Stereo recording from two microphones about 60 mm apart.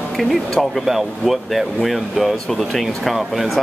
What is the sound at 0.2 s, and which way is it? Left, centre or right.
Speech, centre.